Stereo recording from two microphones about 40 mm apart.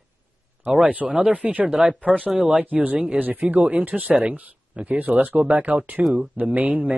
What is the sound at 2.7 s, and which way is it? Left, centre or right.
Speech, right.